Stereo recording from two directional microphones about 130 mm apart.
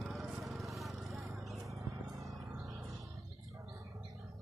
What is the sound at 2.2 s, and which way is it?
Music, 25° right (ahead or behind).